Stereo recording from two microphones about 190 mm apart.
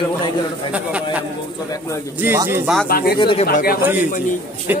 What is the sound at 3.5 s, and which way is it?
Speech, 50° left (ahead or behind).